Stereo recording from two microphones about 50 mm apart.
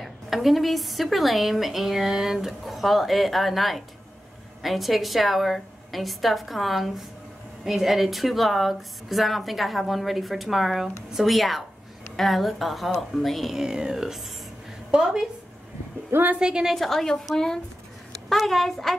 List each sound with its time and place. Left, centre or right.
0.0 s a woman's voice: centre
13.6 s speech: centre
14.9 s a woman's voice: centre
16.1 s a woman's voice: right
16.3 s speech: centre
16.7 s a woman's voice: centre